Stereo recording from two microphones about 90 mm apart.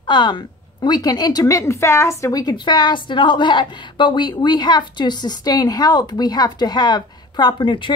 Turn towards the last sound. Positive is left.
turn(degrees=65)  # may be behind; listen again after turning